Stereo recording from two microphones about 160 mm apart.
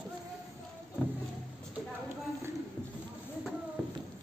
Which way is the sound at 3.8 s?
5° right (ahead or behind).